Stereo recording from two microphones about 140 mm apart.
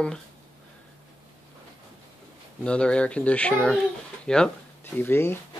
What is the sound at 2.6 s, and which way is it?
A child's voice, 10° left (ahead or behind).